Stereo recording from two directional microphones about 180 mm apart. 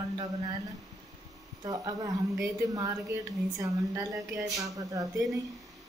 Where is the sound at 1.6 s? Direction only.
20° right (ahead or behind).